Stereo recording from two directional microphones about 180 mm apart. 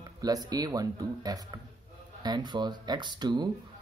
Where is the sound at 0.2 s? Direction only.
20° right (ahead or behind).